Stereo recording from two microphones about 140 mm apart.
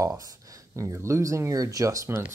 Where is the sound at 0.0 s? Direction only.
25° right (ahead or behind).